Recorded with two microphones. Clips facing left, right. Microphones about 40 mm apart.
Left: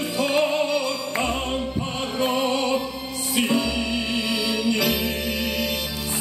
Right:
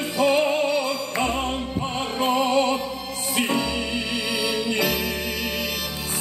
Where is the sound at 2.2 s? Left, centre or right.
Right.